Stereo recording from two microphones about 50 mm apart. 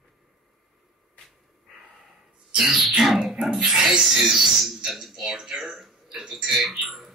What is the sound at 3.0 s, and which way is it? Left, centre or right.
A man's voice, centre.